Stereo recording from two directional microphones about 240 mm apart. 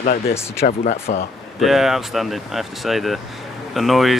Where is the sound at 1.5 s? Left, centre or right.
Centre.